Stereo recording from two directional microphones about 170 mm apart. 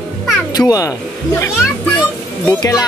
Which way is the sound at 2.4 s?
20° left (ahead or behind).